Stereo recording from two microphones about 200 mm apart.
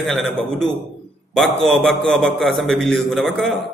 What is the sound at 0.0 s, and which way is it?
A man's voice, centre (ahead or behind).